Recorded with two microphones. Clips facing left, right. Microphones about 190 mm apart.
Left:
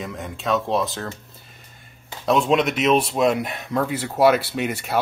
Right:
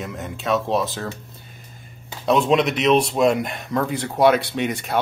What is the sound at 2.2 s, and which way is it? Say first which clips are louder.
Speech: right 1 dB; centre (ahead or behind).